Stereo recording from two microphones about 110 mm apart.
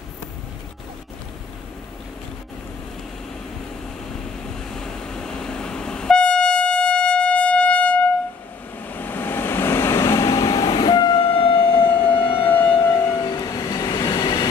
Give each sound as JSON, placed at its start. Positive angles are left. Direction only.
{"t": 4.6, "sound": "train", "side_deg": 5}
{"t": 8.8, "sound": "vehicle", "side_deg": 15}
{"t": 12.8, "sound": "vehicle", "side_deg": 25}
{"t": 13.1, "sound": "train", "side_deg": 35}